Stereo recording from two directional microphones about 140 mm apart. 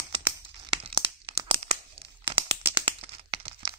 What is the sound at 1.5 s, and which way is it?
Tearing, 40° right (ahead or behind).